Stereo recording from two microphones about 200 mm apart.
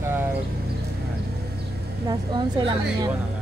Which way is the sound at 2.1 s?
20° right (ahead or behind).